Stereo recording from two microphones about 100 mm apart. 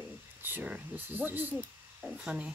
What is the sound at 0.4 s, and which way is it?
Speech, 20° right (ahead or behind).